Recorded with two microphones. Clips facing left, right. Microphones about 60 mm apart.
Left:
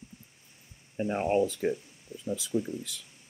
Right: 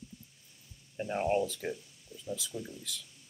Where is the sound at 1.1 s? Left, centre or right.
Left.